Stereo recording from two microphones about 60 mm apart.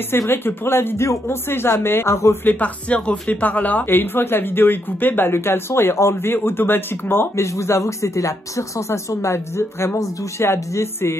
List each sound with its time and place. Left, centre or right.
0.3 s speech: left
2.4 s speech: left
7.5 s speech: left